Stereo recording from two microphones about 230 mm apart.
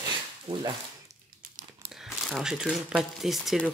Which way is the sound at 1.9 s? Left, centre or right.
Centre.